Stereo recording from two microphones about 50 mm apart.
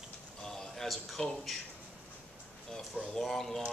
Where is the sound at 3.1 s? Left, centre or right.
Centre.